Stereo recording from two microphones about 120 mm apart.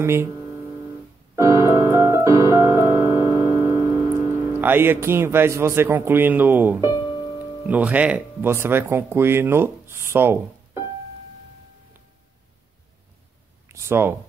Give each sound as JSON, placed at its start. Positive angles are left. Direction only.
{"t": 0.0, "sound": "speech", "side_deg": -20}
{"t": 1.3, "sound": "keyboard", "side_deg": -25}
{"t": 6.9, "sound": "music", "side_deg": 40}
{"t": 7.6, "sound": "speech", "side_deg": -10}
{"t": 13.7, "sound": "speech", "side_deg": -20}